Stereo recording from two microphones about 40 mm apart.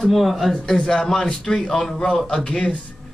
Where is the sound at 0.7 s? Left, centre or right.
Centre.